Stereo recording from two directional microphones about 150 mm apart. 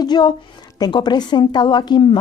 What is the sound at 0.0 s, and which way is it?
A woman's voice, 30° left (ahead or behind).